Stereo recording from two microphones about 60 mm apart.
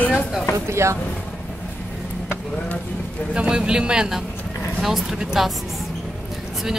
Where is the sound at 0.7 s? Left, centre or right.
Right.